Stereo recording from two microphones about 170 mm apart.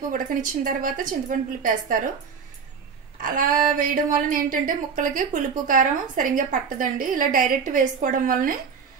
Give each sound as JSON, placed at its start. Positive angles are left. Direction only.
{"t": 0.1, "sound": "a woman's voice", "side_deg": -50}
{"t": 3.2, "sound": "a woman's voice", "side_deg": -55}